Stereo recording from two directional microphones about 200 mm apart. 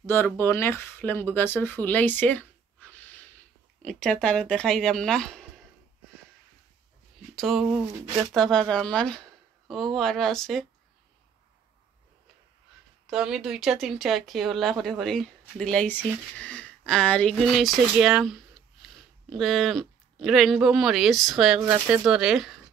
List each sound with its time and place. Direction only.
0.0 s speech: 10° left (ahead or behind)
7.3 s speech: centre (ahead or behind)
13.0 s speech: 5° right (ahead or behind)